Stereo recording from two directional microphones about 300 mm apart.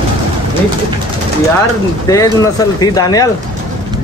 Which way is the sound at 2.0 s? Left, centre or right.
Centre.